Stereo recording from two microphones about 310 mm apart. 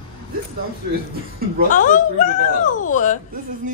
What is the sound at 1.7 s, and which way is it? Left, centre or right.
A woman's voice, left.